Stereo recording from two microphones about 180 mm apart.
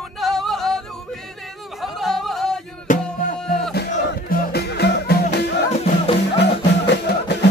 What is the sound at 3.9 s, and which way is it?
Music, 55° left (ahead or behind).